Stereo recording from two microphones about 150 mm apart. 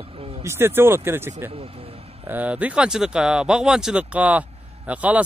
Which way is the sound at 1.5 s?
40° right (ahead or behind).